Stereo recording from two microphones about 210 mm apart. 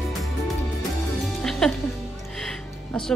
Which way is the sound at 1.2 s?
Centre (ahead or behind).